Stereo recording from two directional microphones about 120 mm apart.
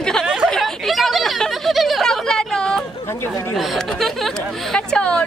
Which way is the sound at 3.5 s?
Centre (ahead or behind).